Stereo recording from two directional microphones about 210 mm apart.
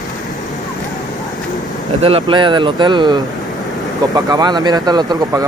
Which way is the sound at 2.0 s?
25° right (ahead or behind).